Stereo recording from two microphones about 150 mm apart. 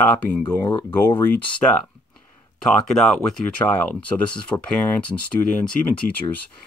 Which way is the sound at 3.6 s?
20° left (ahead or behind).